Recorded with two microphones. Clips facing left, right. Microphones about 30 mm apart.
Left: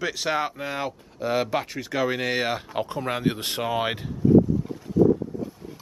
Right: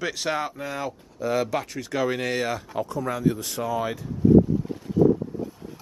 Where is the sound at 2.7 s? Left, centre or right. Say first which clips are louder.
Even; left.